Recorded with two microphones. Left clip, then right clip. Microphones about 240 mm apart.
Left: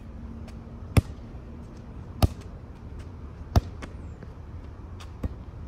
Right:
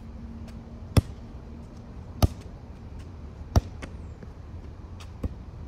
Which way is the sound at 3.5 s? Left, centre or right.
Centre.